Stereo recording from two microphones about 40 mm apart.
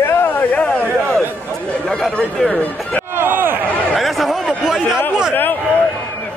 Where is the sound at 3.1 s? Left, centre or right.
Right.